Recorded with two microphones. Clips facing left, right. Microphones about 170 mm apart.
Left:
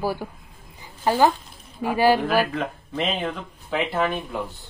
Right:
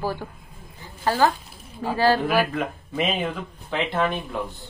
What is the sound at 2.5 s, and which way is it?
Speech, 5° right (ahead or behind).